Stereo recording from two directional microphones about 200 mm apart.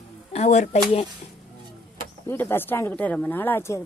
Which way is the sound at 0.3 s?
35° left (ahead or behind).